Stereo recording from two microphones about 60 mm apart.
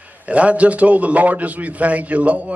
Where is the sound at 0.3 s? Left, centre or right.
Right.